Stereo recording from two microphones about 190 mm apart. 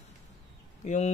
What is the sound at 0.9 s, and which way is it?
Speech, 40° left (ahead or behind).